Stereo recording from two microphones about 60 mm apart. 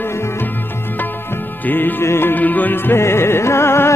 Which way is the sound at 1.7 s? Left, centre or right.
Left.